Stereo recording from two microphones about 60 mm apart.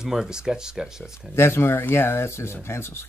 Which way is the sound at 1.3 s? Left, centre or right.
Left.